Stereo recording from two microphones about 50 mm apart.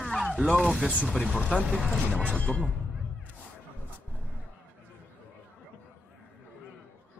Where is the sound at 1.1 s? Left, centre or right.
Left.